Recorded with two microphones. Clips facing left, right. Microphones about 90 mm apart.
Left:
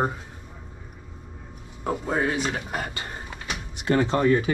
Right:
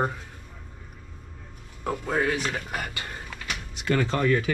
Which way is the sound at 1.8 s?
15° left (ahead or behind).